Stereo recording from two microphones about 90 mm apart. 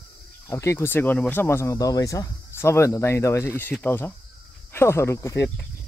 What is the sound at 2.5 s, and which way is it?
Speech, 30° left (ahead or behind).